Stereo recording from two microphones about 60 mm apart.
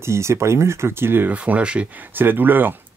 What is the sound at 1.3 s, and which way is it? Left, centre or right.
Speech, right.